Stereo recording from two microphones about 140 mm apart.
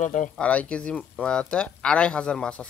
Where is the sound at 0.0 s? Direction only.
65° left (ahead or behind).